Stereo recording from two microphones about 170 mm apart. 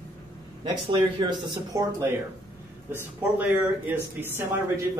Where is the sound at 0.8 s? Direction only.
25° right (ahead or behind).